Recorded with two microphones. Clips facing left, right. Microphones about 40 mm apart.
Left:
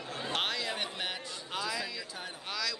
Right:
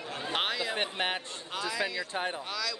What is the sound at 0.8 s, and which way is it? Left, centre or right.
Speech, right.